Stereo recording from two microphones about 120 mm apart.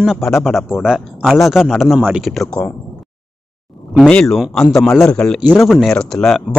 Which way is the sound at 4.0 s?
5° left (ahead or behind).